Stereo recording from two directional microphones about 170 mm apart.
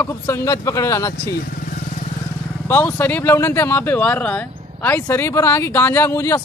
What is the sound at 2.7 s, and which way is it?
Speech, 15° left (ahead or behind).